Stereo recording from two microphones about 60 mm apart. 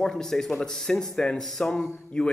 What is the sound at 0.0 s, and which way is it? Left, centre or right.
A man's voice, centre.